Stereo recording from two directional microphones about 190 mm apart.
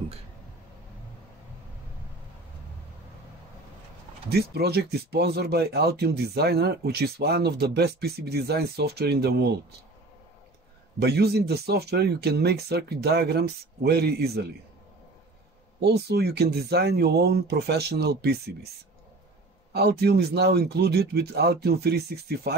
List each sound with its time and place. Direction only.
4.3 s speech: 55° right (ahead or behind)
11.0 s speech: 55° right (ahead or behind)
15.8 s speech: 60° right (ahead or behind)
19.7 s speech: 60° right (ahead or behind)